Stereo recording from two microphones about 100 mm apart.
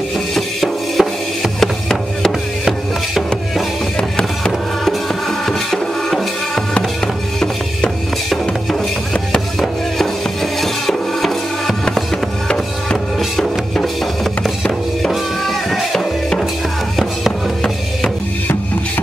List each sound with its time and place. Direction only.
0.3 s music: centre (ahead or behind)
9.6 s music: centre (ahead or behind)